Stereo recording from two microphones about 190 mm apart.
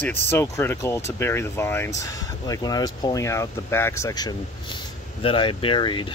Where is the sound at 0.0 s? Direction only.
10° left (ahead or behind).